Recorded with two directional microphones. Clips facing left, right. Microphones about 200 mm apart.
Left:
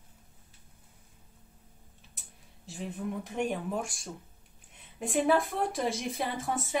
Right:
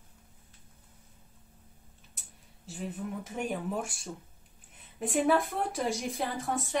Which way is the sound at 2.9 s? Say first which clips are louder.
Left 3 dB; 5° right (ahead or behind).